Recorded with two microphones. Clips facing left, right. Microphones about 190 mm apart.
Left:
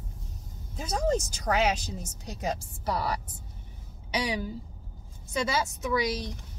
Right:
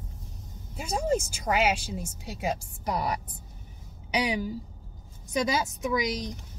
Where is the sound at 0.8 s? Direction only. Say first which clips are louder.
Even; 10° right (ahead or behind).